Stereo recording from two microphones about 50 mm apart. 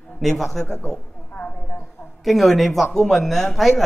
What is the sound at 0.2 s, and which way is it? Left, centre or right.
Speech, centre.